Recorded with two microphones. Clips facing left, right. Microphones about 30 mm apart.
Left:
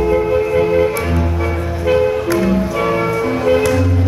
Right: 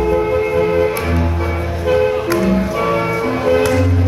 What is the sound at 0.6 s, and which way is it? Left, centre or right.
Music, centre.